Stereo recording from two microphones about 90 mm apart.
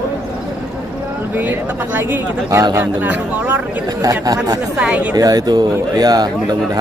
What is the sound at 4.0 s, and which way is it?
Speech, 40° right (ahead or behind).